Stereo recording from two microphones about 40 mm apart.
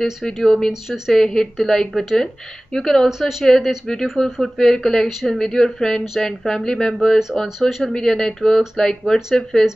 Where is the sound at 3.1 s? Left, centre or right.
Centre.